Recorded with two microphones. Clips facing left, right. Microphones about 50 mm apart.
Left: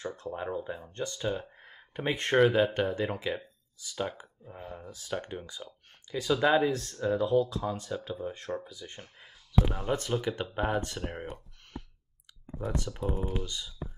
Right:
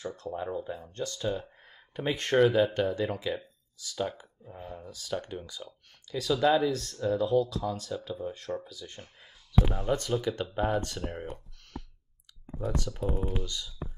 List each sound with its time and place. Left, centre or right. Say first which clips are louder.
0.0 s speech: right 1 dB; left
13.0 s speech: right 1 dB; centre